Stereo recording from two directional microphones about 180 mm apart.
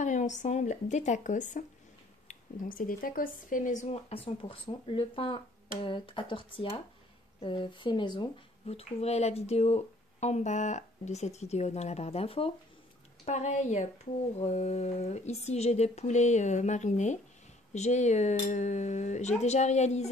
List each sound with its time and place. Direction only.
0.0 s speech: 40° left (ahead or behind)